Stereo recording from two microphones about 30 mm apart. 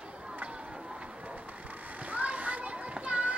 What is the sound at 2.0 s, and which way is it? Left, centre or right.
Children playing, right.